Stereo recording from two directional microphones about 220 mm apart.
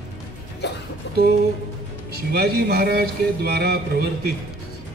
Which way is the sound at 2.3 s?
45° right (ahead or behind).